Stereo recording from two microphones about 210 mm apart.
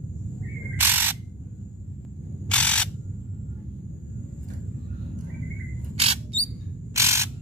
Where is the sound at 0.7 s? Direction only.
10° right (ahead or behind).